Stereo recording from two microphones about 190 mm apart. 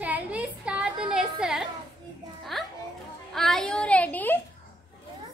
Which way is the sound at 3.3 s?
Centre (ahead or behind).